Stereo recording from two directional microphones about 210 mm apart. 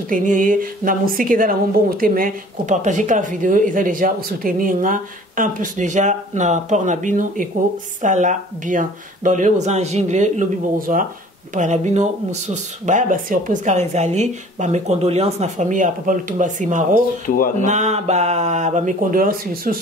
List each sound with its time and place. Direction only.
0.1 s a woman's voice: 40° right (ahead or behind)
17.3 s speech: 40° left (ahead or behind)
17.6 s a woman's voice: 35° right (ahead or behind)